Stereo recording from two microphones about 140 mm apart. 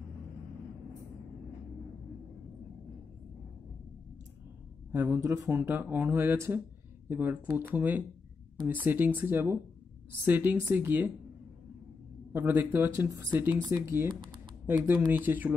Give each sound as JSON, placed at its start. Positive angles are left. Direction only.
{"t": 4.9, "sound": "speech", "side_deg": -15}
{"t": 12.3, "sound": "speech", "side_deg": -15}